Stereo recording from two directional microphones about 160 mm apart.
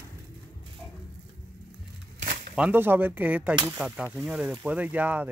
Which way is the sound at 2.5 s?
10° right (ahead or behind).